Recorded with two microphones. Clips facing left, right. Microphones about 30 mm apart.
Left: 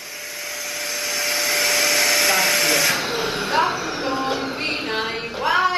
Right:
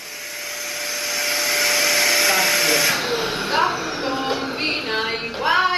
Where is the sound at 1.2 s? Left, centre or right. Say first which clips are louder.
Right 1 dB; centre.